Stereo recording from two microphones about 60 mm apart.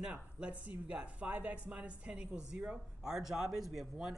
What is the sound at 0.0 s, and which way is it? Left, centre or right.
A man's voice, centre.